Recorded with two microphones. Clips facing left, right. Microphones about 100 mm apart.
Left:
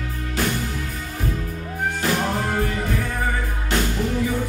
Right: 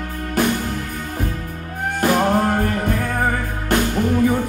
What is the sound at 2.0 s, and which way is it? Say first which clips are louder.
Music: right 8 dB; 50° right (ahead or behind).